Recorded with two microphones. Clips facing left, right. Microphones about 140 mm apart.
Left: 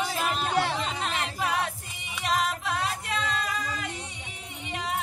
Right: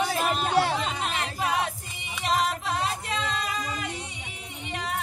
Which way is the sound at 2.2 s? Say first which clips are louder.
Right 2 dB; 30° right (ahead or behind).